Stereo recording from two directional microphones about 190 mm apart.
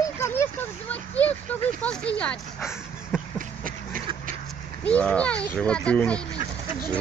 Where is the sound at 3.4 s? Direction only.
45° right (ahead or behind).